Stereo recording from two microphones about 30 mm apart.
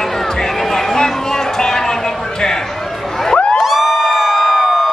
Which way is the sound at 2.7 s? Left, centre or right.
Centre.